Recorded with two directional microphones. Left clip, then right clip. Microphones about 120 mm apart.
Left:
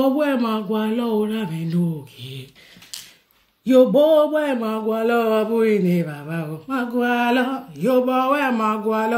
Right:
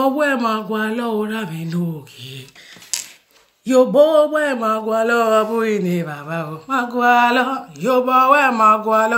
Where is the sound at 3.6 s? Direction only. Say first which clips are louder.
Right 2 dB; 10° left (ahead or behind).